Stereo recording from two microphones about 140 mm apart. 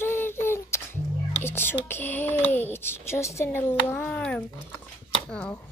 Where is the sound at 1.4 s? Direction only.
15° left (ahead or behind).